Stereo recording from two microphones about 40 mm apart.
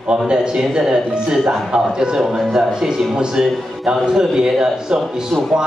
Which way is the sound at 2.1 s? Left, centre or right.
Centre.